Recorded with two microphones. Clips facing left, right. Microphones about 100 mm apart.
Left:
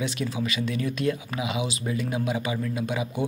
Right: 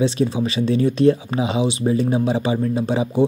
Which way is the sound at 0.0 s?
25° right (ahead or behind).